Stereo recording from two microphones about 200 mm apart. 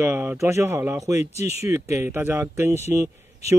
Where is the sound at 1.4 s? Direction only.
30° left (ahead or behind).